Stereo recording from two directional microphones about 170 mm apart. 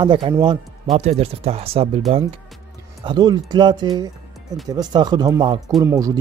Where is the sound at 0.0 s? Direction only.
25° right (ahead or behind).